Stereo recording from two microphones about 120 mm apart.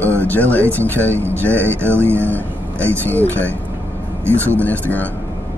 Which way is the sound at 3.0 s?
15° left (ahead or behind).